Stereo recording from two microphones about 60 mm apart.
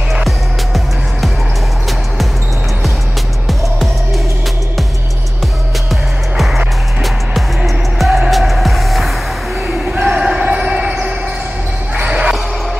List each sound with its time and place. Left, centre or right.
3.4 s music: centre
6.3 s music: centre
9.7 s basketball bounce: centre
11.9 s music: centre